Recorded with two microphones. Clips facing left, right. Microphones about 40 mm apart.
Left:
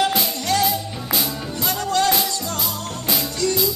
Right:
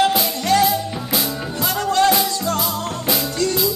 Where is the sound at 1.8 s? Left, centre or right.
Right.